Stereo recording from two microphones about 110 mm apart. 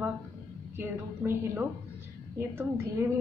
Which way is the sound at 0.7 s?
20° right (ahead or behind).